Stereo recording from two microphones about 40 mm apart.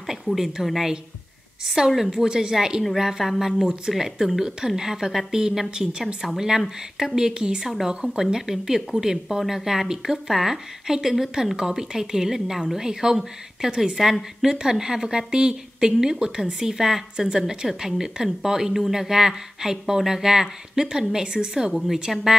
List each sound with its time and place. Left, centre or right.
0.0 s a sound: centre
0.7 s a woman's voice: centre
2.2 s a woman's voice: centre
21.7 s a woman's voice: centre